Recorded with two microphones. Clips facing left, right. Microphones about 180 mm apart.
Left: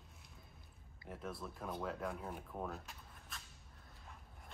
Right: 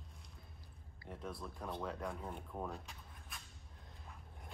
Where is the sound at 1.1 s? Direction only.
Centre (ahead or behind).